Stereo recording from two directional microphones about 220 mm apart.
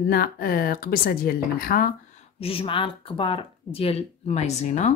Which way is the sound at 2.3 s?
25° left (ahead or behind).